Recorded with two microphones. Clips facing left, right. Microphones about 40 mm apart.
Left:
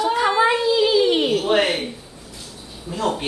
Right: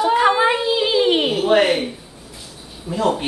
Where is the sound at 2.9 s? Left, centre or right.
Centre.